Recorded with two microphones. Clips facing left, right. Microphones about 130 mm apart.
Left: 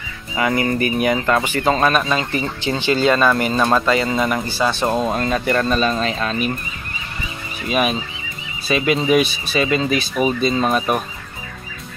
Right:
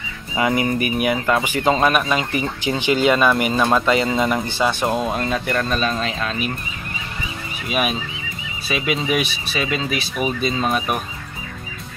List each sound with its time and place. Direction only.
0.4 s speech: 15° right (ahead or behind)
4.8 s speech: centre (ahead or behind)
7.6 s speech: 5° right (ahead or behind)